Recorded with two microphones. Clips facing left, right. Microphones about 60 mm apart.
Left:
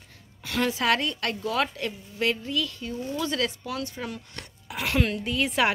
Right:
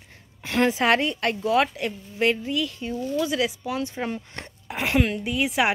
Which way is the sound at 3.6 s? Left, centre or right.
Right.